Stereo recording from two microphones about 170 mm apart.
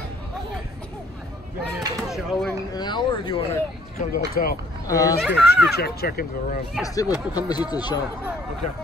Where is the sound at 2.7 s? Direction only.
25° left (ahead or behind).